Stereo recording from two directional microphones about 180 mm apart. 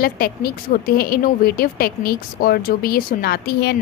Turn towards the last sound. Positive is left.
turn(degrees=60)  # may be behind; listen again after turning